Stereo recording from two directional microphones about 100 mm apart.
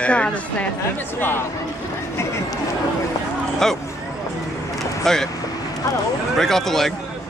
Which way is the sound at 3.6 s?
5° left (ahead or behind).